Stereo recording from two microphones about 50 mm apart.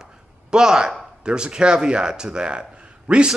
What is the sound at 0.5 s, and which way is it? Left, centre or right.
Speech, centre.